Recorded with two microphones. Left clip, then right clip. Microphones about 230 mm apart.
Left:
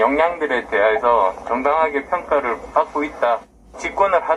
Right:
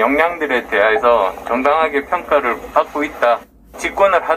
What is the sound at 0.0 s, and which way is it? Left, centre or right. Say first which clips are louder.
A man's voice: right 2 dB; right.